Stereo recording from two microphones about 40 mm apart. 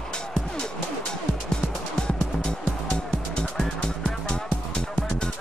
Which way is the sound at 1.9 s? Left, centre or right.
Centre.